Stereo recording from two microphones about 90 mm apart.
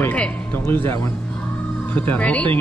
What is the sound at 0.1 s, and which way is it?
Speech, 20° left (ahead or behind).